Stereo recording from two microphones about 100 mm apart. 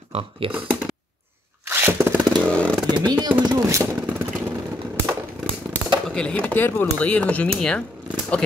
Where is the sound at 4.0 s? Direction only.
15° right (ahead or behind).